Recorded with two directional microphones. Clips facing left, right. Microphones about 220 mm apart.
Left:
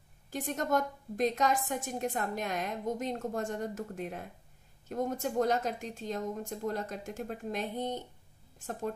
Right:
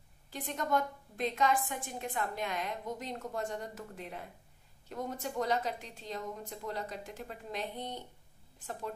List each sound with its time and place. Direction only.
0.3 s a woman's voice: 45° left (ahead or behind)